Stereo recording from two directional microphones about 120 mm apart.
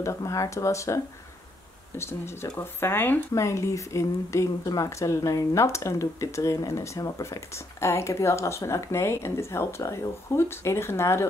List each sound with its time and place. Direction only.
0.0 s speech: 25° left (ahead or behind)